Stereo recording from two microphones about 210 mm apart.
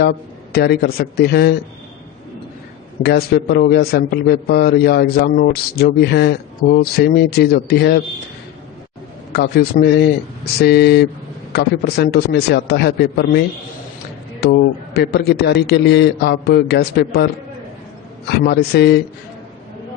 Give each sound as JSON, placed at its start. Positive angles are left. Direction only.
{"t": 0.0, "sound": "a man's voice", "side_deg": 50}
{"t": 3.0, "sound": "a man's voice", "side_deg": 50}
{"t": 9.3, "sound": "a man's voice", "side_deg": 50}
{"t": 14.4, "sound": "a man's voice", "side_deg": 50}
{"t": 18.4, "sound": "a man's voice", "side_deg": 50}